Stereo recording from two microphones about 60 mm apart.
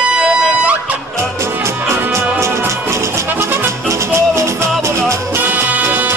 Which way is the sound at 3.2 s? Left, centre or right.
Right.